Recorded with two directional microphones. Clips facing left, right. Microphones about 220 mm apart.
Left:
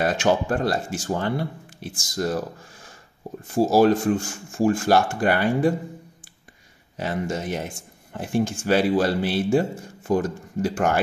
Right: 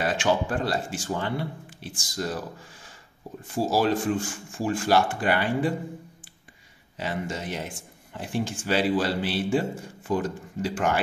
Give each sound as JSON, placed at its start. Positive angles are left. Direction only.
{"t": 0.0, "sound": "speech", "side_deg": 45}
{"t": 3.5, "sound": "speech", "side_deg": 45}
{"t": 7.0, "sound": "speech", "side_deg": 45}